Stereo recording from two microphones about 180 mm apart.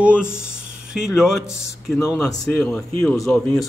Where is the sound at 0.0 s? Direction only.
5° right (ahead or behind).